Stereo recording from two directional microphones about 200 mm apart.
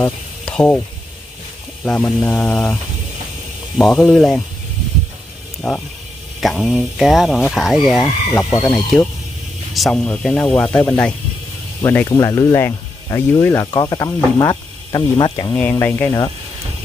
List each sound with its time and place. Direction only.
0.0 s speech: 5° left (ahead or behind)
1.9 s speech: 5° left (ahead or behind)
5.6 s speech: 5° left (ahead or behind); by 15.5 s 20° left (ahead or behind)
15.5 s speech: 10° left (ahead or behind)